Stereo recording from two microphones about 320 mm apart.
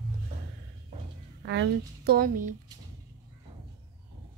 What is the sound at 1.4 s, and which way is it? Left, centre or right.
A woman's voice, right.